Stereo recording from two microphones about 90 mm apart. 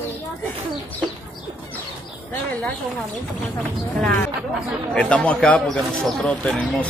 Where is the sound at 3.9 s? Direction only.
5° left (ahead or behind).